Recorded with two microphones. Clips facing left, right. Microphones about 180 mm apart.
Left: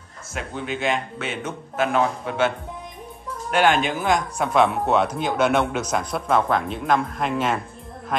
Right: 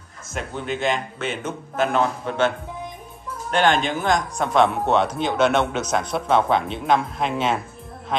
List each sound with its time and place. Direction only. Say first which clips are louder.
0.3 s a man's voice: right 1 dB; centre (ahead or behind)